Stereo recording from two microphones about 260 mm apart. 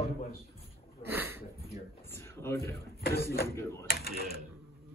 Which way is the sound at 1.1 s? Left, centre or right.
Centre.